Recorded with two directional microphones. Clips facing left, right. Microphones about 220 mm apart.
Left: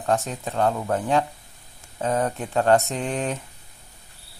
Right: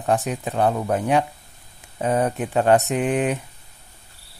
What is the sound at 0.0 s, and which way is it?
Speech, 15° right (ahead or behind).